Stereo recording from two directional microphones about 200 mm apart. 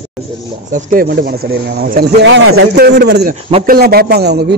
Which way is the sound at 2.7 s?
55° right (ahead or behind).